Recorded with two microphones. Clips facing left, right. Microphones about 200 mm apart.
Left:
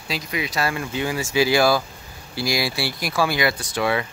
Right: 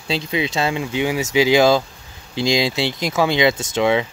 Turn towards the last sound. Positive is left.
turn(degrees=-20)  # may be behind; listen again after turning